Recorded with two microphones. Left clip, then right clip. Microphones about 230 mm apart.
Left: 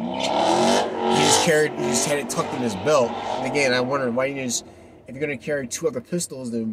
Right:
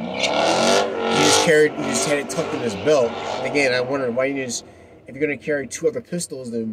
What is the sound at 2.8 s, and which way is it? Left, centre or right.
Speech, centre.